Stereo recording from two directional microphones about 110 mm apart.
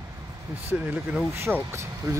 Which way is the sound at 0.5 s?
15° right (ahead or behind).